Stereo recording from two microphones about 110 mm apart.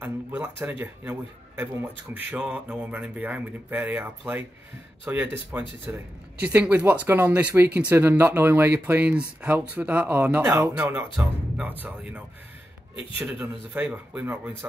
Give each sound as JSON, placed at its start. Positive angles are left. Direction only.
{"t": 0.0, "sound": "speech", "side_deg": -15}
{"t": 6.4, "sound": "speech", "side_deg": -15}
{"t": 13.2, "sound": "speech", "side_deg": -10}